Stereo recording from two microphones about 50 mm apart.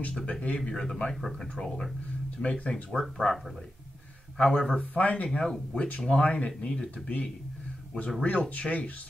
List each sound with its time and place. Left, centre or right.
0.2 s speech: left
0.6 s speech: centre
1.1 s speech: centre
1.5 s speech: centre
2.4 s speech: left
2.7 s speech: centre
4.4 s speech: centre
5.4 s speech: centre